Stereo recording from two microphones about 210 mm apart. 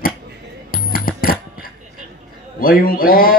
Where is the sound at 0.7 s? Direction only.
45° left (ahead or behind).